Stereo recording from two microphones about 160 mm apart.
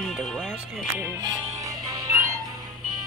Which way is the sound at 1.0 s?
15° right (ahead or behind).